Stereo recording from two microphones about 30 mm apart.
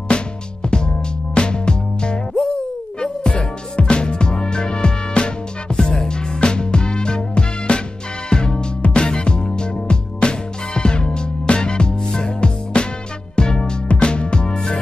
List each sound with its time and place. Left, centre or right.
0.1 s music: left